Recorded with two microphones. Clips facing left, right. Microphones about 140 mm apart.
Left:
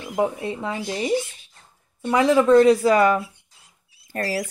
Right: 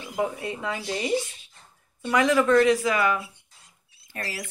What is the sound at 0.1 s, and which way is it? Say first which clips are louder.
A woman's voice: left 5 dB; 30° left (ahead or behind).